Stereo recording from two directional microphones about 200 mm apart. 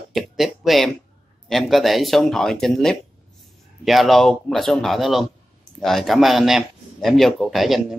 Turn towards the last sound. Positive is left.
turn(degrees=0)  # may be behind; listen again after turning